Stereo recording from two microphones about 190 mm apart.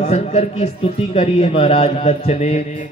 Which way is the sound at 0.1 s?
35° left (ahead or behind).